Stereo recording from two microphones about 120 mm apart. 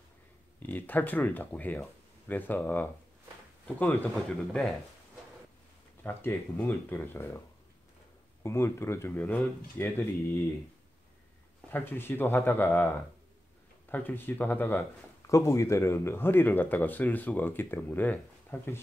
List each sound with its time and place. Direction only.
0.6 s speech: 15° left (ahead or behind)
4.1 s a man's voice: centre (ahead or behind)
6.0 s speech: 15° left (ahead or behind)
11.7 s speech: 15° left (ahead or behind)